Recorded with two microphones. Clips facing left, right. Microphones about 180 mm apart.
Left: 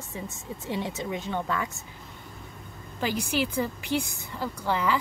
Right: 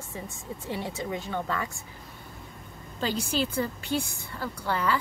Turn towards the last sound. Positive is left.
turn(degrees=15)  # may be behind; listen again after turning